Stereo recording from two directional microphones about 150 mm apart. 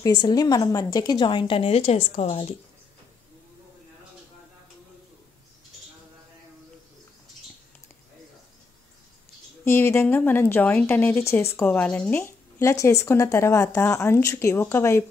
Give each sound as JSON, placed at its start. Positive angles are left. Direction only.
{"t": 0.0, "sound": "a woman's voice", "side_deg": 25}
{"t": 9.7, "sound": "a woman's voice", "side_deg": 15}